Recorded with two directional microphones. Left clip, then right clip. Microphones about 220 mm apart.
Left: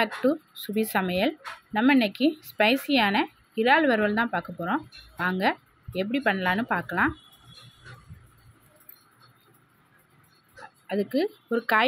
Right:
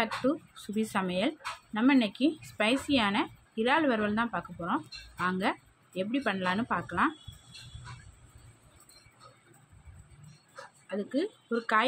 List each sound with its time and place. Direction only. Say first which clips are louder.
0.0 s speech: left 5 dB; 15° left (ahead or behind)
10.9 s speech: left 6 dB; 15° left (ahead or behind)